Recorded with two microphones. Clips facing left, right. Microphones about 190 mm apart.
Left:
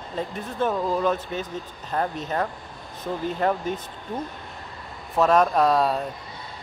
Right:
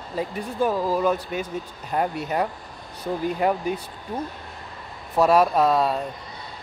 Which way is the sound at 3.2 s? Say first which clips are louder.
Right 1 dB; 10° right (ahead or behind).